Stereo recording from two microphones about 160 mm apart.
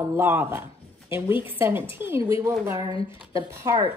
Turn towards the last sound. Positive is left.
turn(degrees=-15)  # may be behind; listen again after turning